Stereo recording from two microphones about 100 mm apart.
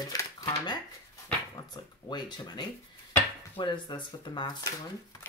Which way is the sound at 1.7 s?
45° left (ahead or behind).